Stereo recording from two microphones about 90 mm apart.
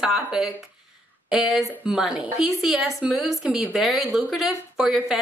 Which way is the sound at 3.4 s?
15° right (ahead or behind).